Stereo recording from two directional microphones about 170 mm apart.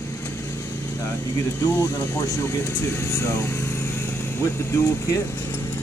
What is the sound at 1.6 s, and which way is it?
Speech, 15° left (ahead or behind).